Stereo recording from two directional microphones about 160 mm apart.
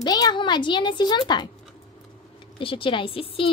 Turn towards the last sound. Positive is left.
turn(degrees=35)  # may be behind; listen again after turning